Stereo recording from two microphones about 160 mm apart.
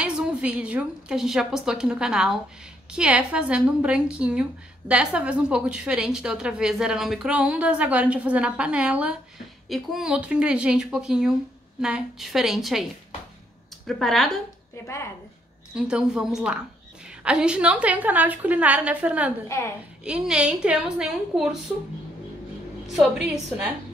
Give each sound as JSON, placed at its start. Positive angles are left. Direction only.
{"t": 0.0, "sound": "a woman's voice", "side_deg": -5}
{"t": 13.8, "sound": "a woman's voice", "side_deg": 0}
{"t": 15.7, "sound": "a woman's voice", "side_deg": -5}
{"t": 19.4, "sound": "a woman's voice", "side_deg": 20}
{"t": 20.1, "sound": "a woman's voice", "side_deg": -5}
{"t": 22.9, "sound": "a woman's voice", "side_deg": -5}